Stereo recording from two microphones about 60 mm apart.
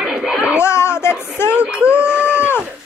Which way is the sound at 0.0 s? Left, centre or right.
Centre.